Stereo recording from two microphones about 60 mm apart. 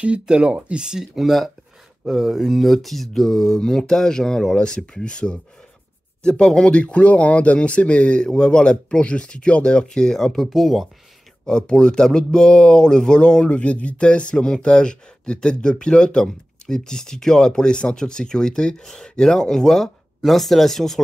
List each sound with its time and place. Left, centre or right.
0.0 s speech: centre
11.4 s speech: centre